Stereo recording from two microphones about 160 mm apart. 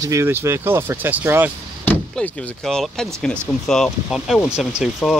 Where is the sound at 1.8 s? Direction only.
10° left (ahead or behind).